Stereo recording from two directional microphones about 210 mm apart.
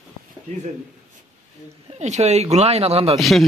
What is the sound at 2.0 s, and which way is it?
Speech, 30° right (ahead or behind).